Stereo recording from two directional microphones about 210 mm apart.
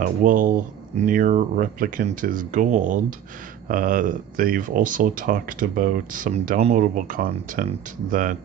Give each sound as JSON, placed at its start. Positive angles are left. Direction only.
{"t": 0.0, "sound": "speech", "side_deg": -40}